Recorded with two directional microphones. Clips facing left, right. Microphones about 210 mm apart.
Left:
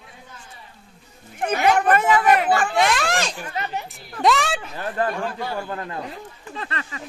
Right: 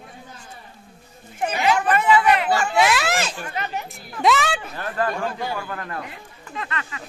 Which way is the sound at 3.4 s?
30° left (ahead or behind).